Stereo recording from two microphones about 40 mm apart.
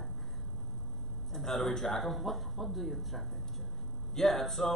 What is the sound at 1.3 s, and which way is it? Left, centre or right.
A man's voice, centre.